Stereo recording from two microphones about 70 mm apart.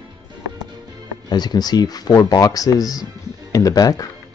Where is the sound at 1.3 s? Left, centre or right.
Left.